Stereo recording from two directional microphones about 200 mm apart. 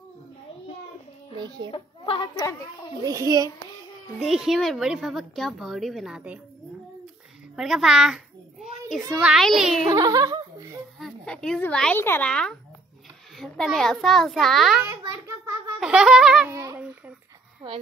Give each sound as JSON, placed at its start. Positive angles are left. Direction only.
{"t": 1.7, "sound": "a woman's voice", "side_deg": 25}
{"t": 3.0, "sound": "a child's voice", "side_deg": -20}
{"t": 4.2, "sound": "speech", "side_deg": 0}
{"t": 7.5, "sound": "a sound", "side_deg": -5}
{"t": 9.2, "sound": "speech", "side_deg": 0}
{"t": 9.8, "sound": "chuckle", "side_deg": -20}
{"t": 11.0, "sound": "speech", "side_deg": 5}
{"t": 14.9, "sound": "a sound", "side_deg": -15}
{"t": 15.8, "sound": "speech", "side_deg": -5}
{"t": 16.5, "sound": "babbling", "side_deg": -15}